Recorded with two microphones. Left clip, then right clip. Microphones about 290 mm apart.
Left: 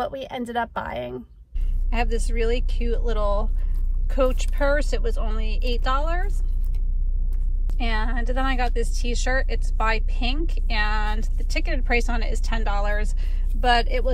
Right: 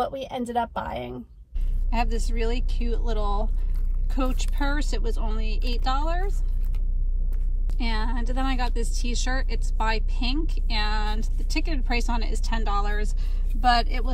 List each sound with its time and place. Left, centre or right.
0.0 s a woman's voice: centre
1.9 s a woman's voice: centre
7.7 s a woman's voice: centre